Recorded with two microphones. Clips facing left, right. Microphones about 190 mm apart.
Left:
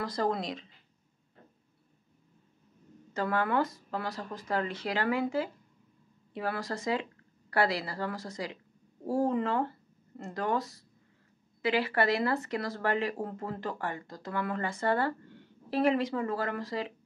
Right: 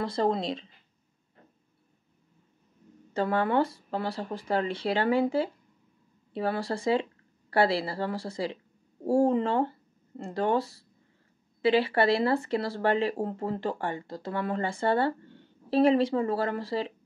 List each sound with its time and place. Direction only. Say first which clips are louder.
0.0 s speech: right 4 dB; 25° right (ahead or behind)
3.1 s speech: right 4 dB; 30° right (ahead or behind)